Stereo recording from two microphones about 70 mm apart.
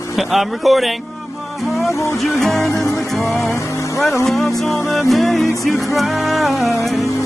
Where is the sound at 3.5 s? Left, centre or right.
Left.